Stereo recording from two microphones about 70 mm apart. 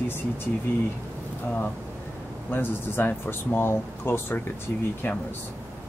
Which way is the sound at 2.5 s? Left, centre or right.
Left.